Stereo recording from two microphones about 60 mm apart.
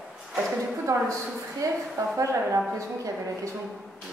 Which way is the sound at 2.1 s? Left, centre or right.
Right.